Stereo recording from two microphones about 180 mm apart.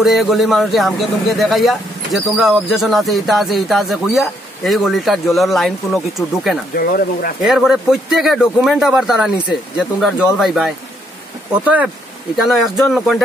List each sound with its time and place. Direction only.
0.0 s a man's voice: centre (ahead or behind)
6.7 s speech: 55° left (ahead or behind)
7.4 s a man's voice: centre (ahead or behind)